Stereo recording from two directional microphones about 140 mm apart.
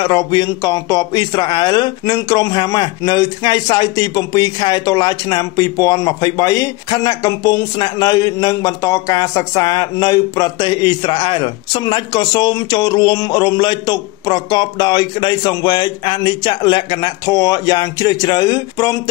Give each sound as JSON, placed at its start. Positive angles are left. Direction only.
{"t": 0.0, "sound": "a man's voice", "side_deg": 30}